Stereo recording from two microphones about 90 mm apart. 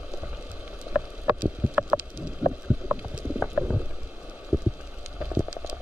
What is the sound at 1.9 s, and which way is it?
Boat, 5° right (ahead or behind).